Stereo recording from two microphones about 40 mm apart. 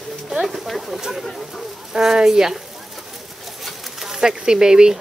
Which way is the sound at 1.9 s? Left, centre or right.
Centre.